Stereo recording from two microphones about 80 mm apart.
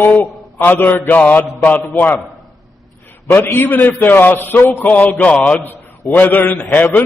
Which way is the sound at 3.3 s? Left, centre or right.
Left.